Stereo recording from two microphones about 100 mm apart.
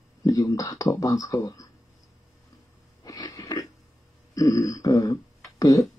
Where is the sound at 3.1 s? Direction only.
40° left (ahead or behind).